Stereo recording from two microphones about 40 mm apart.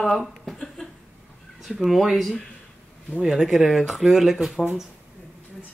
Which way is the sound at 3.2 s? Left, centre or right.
Centre.